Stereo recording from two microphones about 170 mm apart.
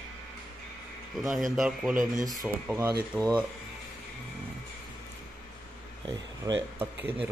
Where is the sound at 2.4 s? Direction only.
15° right (ahead or behind).